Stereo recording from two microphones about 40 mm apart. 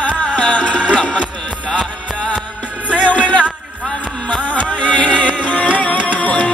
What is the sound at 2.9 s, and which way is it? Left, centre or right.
Music, left.